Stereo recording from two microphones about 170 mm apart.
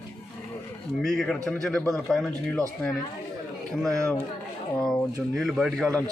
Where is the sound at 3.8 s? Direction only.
Centre (ahead or behind).